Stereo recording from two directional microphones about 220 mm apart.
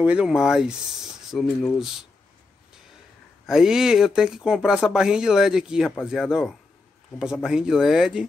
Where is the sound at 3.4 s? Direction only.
Centre (ahead or behind).